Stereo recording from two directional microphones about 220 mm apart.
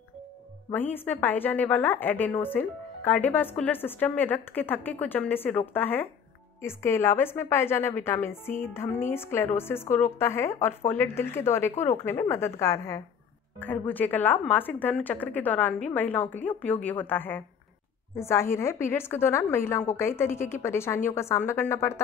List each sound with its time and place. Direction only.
0.7 s a woman's voice: 10° left (ahead or behind)